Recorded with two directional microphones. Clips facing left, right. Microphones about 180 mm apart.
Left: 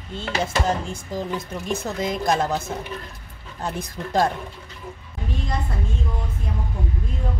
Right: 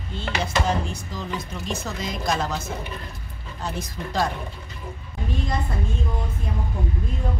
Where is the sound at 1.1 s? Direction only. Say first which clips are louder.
Left 7 dB; 50° left (ahead or behind).